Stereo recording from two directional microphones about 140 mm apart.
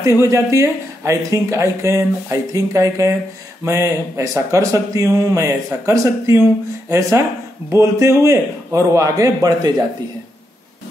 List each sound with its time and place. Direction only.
0.0 s speech: 20° right (ahead or behind)
7.7 s speech: 20° right (ahead or behind)